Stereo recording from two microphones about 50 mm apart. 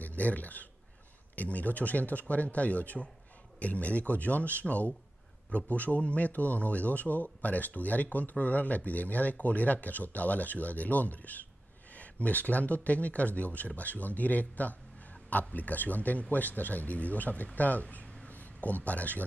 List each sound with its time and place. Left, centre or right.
0.0 s speech: left